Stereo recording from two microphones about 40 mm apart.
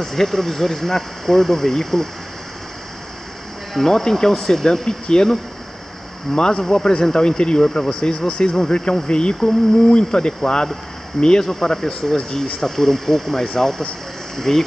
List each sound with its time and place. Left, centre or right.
0.0 s speech: centre
3.7 s speech: centre
6.3 s speech: centre